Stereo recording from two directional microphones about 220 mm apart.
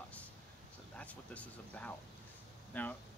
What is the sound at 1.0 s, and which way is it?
Speech, 5° left (ahead or behind).